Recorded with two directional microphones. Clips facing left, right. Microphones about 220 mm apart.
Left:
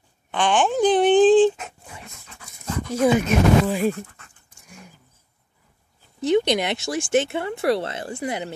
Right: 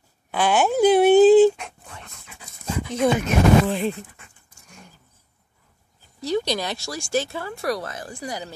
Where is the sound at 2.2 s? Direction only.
10° right (ahead or behind).